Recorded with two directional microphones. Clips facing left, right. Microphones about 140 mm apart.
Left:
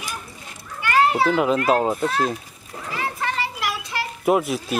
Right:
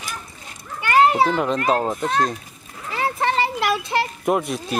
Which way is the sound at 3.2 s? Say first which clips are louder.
Right 7 dB; 30° right (ahead or behind).